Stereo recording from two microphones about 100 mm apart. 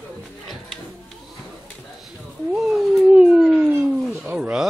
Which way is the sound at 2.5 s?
5° right (ahead or behind).